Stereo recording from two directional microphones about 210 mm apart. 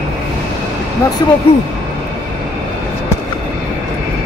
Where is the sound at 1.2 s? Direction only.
20° left (ahead or behind).